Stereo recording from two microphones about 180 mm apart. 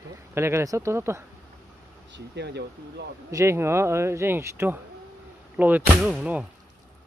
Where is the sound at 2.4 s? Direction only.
70° right (ahead or behind).